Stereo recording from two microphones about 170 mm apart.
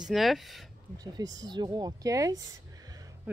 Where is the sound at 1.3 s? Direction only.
25° right (ahead or behind).